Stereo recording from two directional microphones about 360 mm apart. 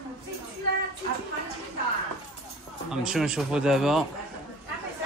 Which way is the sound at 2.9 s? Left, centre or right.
Centre.